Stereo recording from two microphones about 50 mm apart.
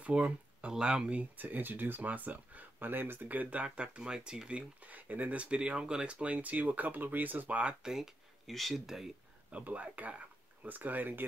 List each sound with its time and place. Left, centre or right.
0.0 s speech: right
1.3 s speech: right; by 4.6 s centre
4.8 s speech: right; by 6.1 s centre
6.1 s speech: right
7.8 s speech: centre
9.5 s speech: right